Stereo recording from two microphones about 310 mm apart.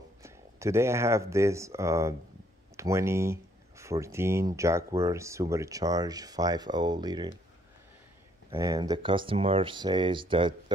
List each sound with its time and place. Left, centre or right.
0.2 s speech: centre
8.5 s speech: centre